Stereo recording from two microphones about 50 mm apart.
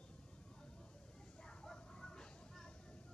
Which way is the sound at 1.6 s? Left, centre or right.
Centre.